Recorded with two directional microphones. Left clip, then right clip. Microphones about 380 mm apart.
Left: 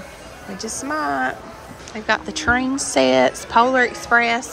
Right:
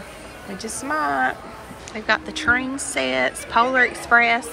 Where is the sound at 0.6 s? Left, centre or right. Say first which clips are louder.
Even; centre.